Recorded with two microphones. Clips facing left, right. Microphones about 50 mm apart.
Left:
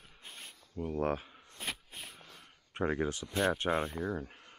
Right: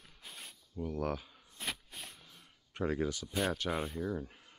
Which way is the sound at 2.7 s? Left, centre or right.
Left.